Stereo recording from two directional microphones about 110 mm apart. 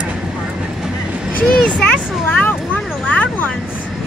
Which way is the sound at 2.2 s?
15° left (ahead or behind).